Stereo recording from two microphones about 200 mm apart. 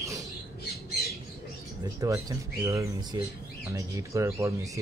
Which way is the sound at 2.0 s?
15° right (ahead or behind).